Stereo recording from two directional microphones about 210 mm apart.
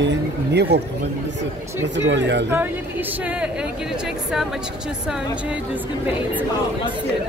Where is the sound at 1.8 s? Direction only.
60° right (ahead or behind).